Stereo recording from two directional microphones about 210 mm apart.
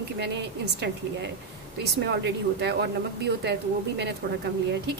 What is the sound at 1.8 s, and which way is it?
A woman's voice, 55° right (ahead or behind).